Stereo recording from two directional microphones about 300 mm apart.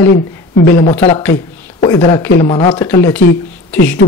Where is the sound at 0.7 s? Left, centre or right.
Left.